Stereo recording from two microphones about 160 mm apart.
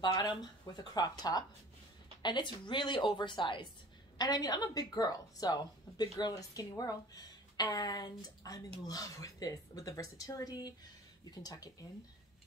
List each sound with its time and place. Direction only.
0.0 s a woman's voice: 25° left (ahead or behind)